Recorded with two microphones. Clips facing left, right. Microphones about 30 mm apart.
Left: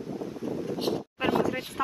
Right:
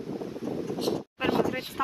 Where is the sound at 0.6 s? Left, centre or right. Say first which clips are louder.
Even; left.